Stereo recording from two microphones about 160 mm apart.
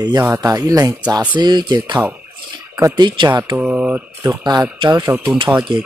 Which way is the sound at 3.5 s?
10° right (ahead or behind).